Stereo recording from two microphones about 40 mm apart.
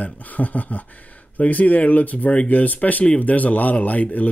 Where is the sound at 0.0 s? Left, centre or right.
Left.